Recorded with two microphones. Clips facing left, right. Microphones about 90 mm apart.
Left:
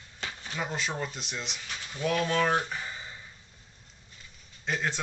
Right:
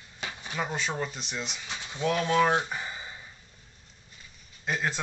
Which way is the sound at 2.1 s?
15° right (ahead or behind).